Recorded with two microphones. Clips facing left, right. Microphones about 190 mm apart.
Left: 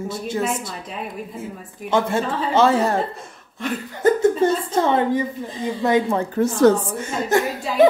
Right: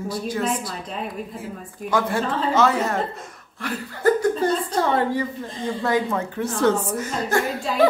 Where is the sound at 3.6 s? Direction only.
20° left (ahead or behind); by 6.8 s 40° left (ahead or behind).